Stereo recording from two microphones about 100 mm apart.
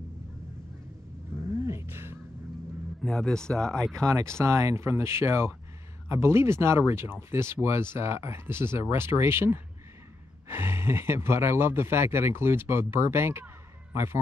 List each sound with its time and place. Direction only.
1.7 s music: 25° right (ahead or behind)
3.0 s speech: 5° left (ahead or behind)
4.1 s speech: 30° right (ahead or behind)